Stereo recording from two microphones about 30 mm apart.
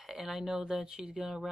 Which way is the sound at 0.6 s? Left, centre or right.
Right.